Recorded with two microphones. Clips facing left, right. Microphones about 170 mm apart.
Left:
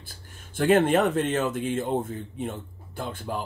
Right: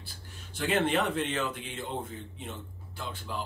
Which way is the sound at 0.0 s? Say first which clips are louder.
Left 1 dB; 50° left (ahead or behind).